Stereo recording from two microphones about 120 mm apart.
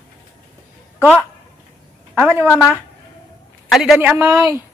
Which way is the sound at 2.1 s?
20° right (ahead or behind).